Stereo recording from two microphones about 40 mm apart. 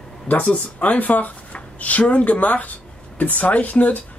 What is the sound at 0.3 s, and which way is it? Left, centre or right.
Speech, left.